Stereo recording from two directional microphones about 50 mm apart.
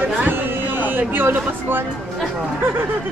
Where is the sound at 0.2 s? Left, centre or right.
Right.